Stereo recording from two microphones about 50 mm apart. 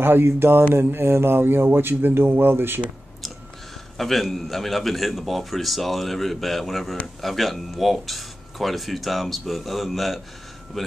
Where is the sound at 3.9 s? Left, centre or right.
Centre.